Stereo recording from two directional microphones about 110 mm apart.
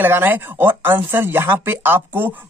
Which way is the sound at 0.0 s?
20° right (ahead or behind).